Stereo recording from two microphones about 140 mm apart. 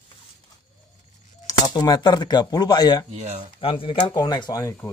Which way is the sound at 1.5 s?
30° left (ahead or behind).